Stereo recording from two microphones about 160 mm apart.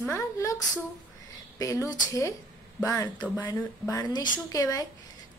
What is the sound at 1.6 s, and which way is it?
Speech, 20° left (ahead or behind).